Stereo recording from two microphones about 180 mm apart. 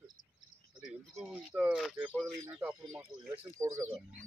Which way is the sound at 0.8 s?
5° right (ahead or behind).